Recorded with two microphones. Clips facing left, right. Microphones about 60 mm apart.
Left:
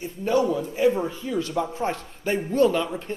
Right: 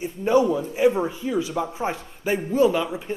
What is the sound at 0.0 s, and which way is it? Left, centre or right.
A man's voice, right.